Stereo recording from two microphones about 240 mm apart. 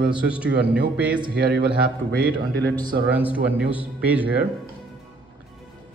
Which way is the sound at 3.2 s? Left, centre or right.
Centre.